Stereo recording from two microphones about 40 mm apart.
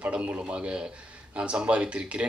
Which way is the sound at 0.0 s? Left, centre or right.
Right.